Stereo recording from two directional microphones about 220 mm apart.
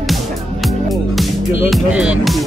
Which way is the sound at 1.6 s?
5° right (ahead or behind).